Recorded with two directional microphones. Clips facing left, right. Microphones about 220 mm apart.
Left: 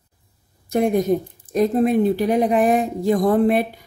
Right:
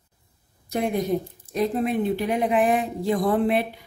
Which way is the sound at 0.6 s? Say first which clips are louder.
Left 6 dB; 45° left (ahead or behind).